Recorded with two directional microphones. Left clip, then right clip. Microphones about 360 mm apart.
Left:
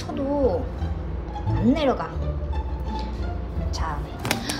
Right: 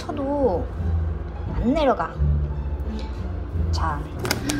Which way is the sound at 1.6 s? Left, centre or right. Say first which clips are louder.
Right 2 dB; centre.